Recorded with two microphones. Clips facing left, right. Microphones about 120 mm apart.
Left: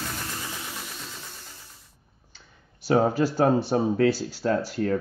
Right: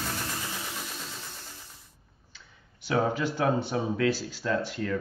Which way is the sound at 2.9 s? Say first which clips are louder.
Left 5 dB; 40° left (ahead or behind).